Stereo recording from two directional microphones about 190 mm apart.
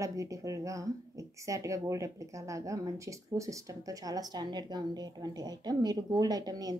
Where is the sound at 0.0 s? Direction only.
15° right (ahead or behind).